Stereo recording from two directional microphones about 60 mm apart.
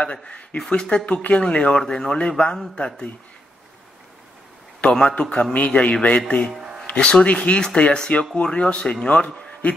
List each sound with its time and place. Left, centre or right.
0.0 s speech: left
4.8 s speech: centre
6.5 s a sound: centre
6.9 s a man's voice: centre